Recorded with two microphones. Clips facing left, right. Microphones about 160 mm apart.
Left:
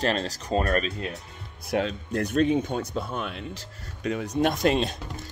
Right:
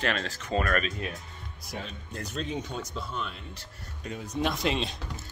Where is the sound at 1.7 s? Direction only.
70° left (ahead or behind).